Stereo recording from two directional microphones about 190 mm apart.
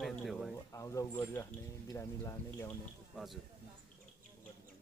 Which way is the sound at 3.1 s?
Centre (ahead or behind).